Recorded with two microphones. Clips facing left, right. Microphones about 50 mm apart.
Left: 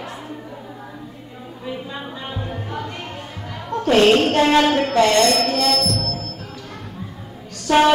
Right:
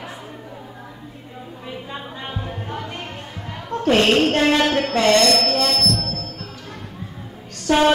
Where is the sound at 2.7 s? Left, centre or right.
Right.